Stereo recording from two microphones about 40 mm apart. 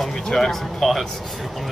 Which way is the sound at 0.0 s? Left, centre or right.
Centre.